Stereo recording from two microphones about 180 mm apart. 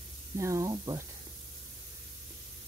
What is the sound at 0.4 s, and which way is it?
Speech, 20° right (ahead or behind).